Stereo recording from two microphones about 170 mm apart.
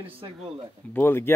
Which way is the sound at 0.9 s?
15° left (ahead or behind).